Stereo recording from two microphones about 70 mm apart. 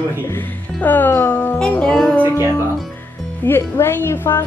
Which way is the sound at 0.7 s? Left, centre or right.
Left.